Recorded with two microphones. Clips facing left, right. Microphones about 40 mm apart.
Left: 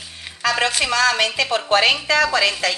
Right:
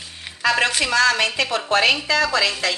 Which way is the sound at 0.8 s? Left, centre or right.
Left.